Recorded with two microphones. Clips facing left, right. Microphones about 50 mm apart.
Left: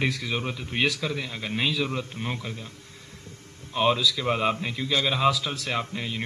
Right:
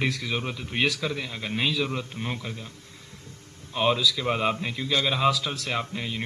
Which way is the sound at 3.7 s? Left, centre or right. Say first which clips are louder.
Left 1 dB; centre.